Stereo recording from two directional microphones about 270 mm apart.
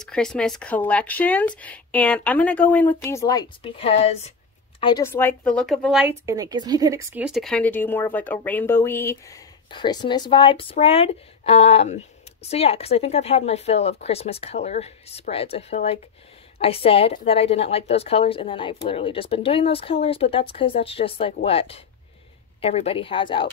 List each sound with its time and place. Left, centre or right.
0.0 s a woman's voice: centre